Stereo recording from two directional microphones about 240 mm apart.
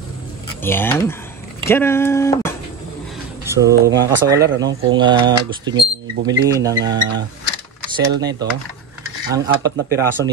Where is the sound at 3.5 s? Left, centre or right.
Centre.